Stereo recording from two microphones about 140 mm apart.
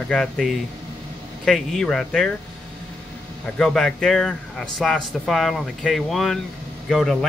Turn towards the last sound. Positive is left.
turn(degrees=0)  # may be behind; listen again after turning